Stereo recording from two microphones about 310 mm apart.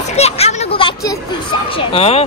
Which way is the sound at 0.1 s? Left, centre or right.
Left.